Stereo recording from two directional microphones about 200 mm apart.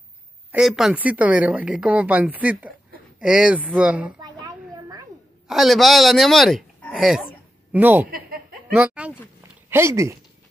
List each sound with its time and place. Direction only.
0.5 s speech: centre (ahead or behind)
4.2 s a sound: 20° right (ahead or behind)
5.5 s speech: centre (ahead or behind)
8.1 s chuckle: 45° right (ahead or behind)
8.7 s speech: 5° right (ahead or behind)